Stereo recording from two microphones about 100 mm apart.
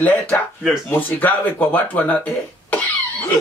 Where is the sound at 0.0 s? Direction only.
20° left (ahead or behind).